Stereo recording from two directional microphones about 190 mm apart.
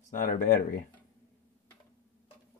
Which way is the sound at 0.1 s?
45° left (ahead or behind).